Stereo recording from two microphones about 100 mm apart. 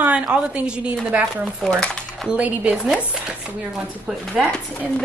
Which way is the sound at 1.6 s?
10° left (ahead or behind).